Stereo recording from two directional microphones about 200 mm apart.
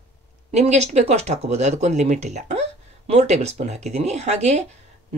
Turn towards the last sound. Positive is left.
turn(degrees=-35)  # may be behind; listen again after turning